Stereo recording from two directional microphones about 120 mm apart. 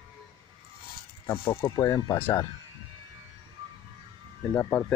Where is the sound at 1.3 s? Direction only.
20° left (ahead or behind).